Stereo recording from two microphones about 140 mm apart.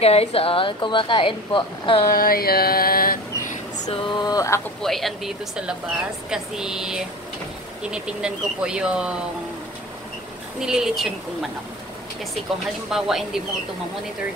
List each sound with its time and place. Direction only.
0.0 s speech: 45° left (ahead or behind)
2.0 s a sound: 90° left
3.9 s a sound: 30° left (ahead or behind)
4.8 s speech: centre (ahead or behind)
10.6 s speech: 5° right (ahead or behind)
12.9 s speech: 5° right (ahead or behind)